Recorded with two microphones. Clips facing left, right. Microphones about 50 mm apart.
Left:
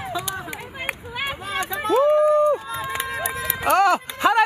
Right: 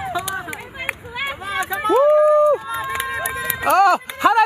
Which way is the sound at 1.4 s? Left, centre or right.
Centre.